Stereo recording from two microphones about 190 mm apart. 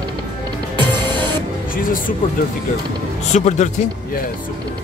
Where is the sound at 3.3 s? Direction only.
40° left (ahead or behind).